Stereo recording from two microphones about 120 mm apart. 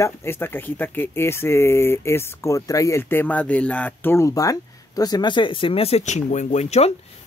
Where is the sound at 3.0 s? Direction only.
15° left (ahead or behind).